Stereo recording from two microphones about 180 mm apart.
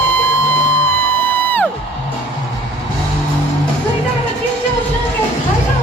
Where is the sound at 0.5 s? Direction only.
10° left (ahead or behind).